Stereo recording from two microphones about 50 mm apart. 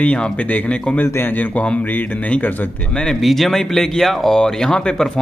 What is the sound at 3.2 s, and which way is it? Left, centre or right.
Speech, centre.